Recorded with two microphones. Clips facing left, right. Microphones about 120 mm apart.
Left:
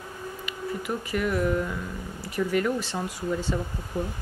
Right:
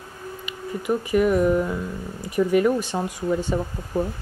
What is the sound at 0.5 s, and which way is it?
A woman's voice, 20° right (ahead or behind).